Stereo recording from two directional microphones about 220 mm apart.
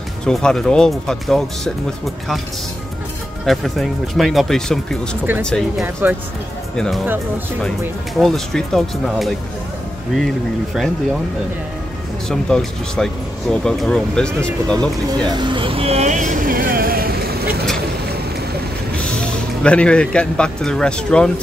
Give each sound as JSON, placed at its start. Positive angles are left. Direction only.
{"t": 0.2, "sound": "speech", "side_deg": 5}
{"t": 3.4, "sound": "speech", "side_deg": 0}
{"t": 7.8, "sound": "speech", "side_deg": 0}
{"t": 12.3, "sound": "speech", "side_deg": 5}
{"t": 15.2, "sound": "vehicle", "side_deg": -20}
{"t": 19.0, "sound": "a man's voice", "side_deg": 5}